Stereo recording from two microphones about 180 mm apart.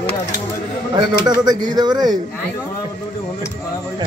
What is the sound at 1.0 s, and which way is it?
Speech, 25° right (ahead or behind).